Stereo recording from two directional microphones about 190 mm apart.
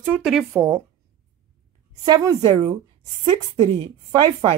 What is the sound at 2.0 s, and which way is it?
Speech, 20° right (ahead or behind).